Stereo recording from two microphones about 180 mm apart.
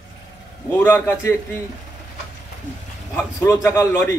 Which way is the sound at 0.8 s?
10° left (ahead or behind).